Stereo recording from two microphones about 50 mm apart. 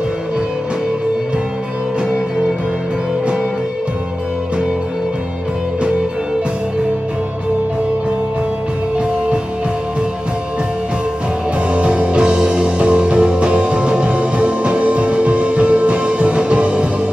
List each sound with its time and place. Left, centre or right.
2.0 s music: centre
11.7 s music: right